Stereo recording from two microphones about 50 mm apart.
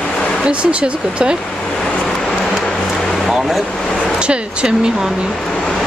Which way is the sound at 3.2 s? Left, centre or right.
Centre.